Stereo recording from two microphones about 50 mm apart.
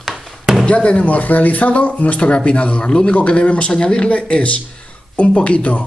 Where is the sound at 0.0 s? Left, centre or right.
Centre.